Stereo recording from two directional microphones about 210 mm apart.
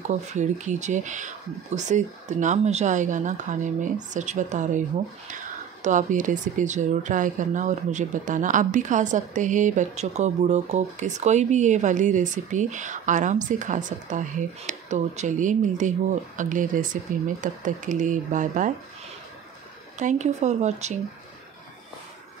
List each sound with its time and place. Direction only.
0.1 s speech: 35° right (ahead or behind)
20.0 s speech: 35° right (ahead or behind)